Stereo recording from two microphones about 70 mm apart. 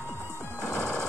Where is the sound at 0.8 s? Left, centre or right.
Centre.